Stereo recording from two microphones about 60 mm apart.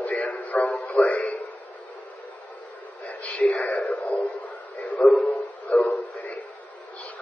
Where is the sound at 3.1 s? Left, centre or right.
Left.